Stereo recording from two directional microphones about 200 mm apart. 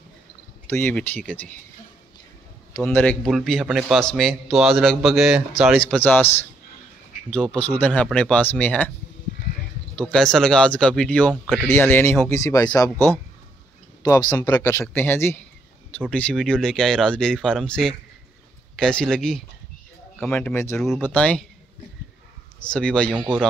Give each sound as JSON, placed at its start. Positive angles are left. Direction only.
{"t": 0.7, "sound": "speech", "side_deg": 10}
{"t": 2.7, "sound": "a man's voice", "side_deg": 10}
{"t": 9.9, "sound": "a man's voice", "side_deg": 5}
{"t": 20.7, "sound": "a man's voice", "side_deg": 0}
{"t": 22.6, "sound": "a man's voice", "side_deg": 5}
{"t": 23.1, "sound": "speech", "side_deg": -10}